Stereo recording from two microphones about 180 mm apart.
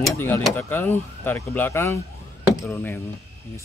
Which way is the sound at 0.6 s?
15° left (ahead or behind).